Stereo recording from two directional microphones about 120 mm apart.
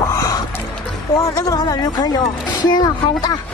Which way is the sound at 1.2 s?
30° left (ahead or behind).